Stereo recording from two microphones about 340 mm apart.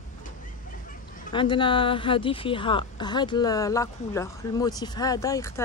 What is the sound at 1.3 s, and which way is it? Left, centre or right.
Speech, centre.